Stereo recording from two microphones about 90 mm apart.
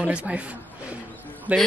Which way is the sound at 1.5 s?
15° right (ahead or behind).